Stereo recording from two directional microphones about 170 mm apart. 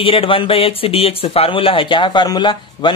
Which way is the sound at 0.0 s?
35° left (ahead or behind).